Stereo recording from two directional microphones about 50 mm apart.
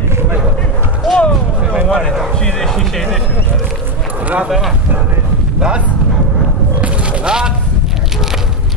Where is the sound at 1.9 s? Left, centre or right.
Centre.